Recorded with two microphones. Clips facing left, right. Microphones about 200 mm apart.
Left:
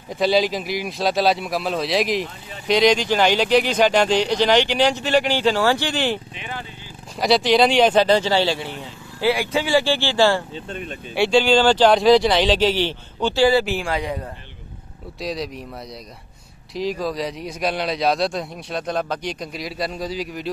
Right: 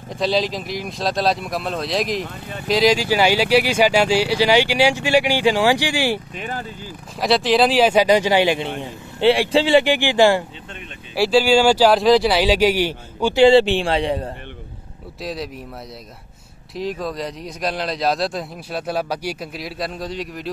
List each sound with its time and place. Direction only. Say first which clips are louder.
0.1 s speech: left 2 dB; centre (ahead or behind)
6.3 s speech: right 4 dB; 45° right (ahead or behind)
7.2 s speech: even; centre (ahead or behind); by 8.6 s 15° right (ahead or behind)
8.8 s speech: right 5 dB; 30° right (ahead or behind)
10.5 s speech: left 7 dB; 40° left (ahead or behind)
11.1 s speech: right 1 dB; 5° right (ahead or behind)
13.4 s speech: right 6 dB; 25° right (ahead or behind)
15.1 s speech: left 1 dB; centre (ahead or behind)
16.7 s speech: left 1 dB; centre (ahead or behind)